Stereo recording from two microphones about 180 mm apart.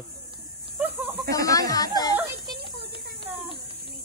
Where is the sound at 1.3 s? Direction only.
20° left (ahead or behind).